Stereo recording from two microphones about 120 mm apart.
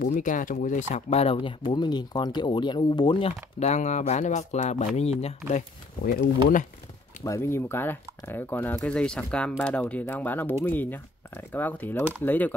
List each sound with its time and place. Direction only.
0.0 s speech: 90° left; by 3.3 s 40° left (ahead or behind)
3.3 s speech: 70° left (ahead or behind)
7.2 s speech: 25° left (ahead or behind)